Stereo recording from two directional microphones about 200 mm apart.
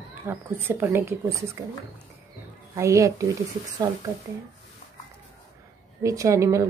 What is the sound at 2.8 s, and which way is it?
Speech, 15° right (ahead or behind).